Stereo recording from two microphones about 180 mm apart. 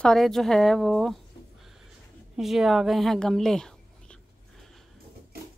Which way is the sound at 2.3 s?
Centre (ahead or behind).